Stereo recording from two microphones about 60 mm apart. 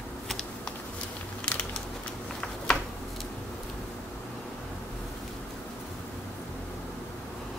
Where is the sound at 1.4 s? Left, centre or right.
Centre.